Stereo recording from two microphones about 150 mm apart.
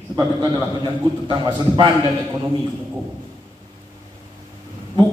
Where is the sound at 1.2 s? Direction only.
30° right (ahead or behind).